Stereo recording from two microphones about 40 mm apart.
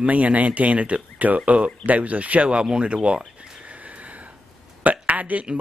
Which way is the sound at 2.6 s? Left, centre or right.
Centre.